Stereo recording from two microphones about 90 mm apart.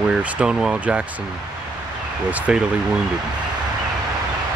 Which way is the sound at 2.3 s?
15° right (ahead or behind).